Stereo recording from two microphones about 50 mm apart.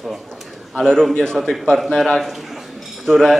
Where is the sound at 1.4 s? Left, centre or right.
Centre.